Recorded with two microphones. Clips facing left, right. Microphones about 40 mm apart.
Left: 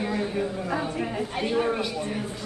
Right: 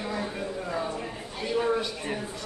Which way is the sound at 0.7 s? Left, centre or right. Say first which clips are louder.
Left 3 dB; left.